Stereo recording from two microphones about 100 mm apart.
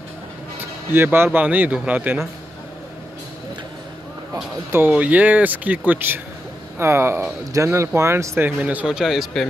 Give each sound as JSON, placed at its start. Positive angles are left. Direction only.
{"t": 0.9, "sound": "speech", "side_deg": -25}
{"t": 4.7, "sound": "speech", "side_deg": -15}